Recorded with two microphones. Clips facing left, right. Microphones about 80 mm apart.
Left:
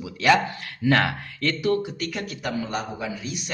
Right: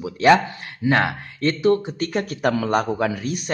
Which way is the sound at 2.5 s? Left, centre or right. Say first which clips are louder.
Right 8 dB; right.